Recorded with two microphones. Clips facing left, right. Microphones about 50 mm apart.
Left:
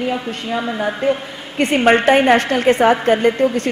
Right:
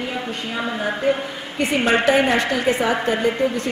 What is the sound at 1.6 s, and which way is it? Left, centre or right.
A woman's voice, left.